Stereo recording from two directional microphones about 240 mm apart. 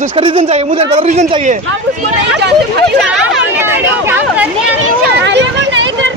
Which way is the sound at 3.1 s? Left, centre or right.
Centre.